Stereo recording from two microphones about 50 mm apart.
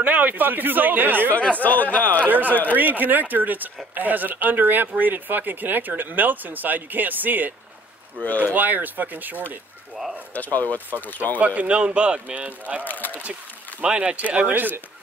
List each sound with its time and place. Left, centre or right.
0.0 s speech: right
1.3 s speech: left
2.2 s speech: right
8.5 s speech: right
10.3 s speech: left
11.3 s speech: right
12.8 s speech: left
13.2 s a sound: right
13.8 s speech: right
14.5 s speech: right